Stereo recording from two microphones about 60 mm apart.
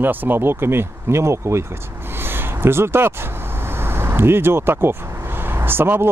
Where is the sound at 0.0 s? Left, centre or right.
Right.